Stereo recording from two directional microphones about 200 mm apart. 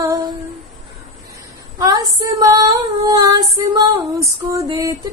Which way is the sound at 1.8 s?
15° right (ahead or behind).